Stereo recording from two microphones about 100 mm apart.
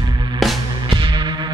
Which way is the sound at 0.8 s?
55° right (ahead or behind).